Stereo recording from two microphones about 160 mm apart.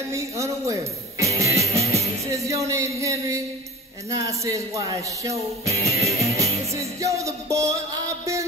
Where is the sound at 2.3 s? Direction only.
20° right (ahead or behind).